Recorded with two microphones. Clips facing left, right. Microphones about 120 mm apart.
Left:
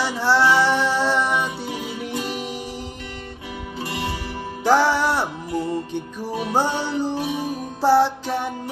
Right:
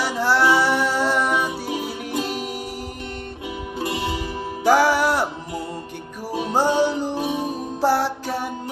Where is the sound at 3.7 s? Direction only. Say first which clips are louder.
Right 3 dB; 20° right (ahead or behind).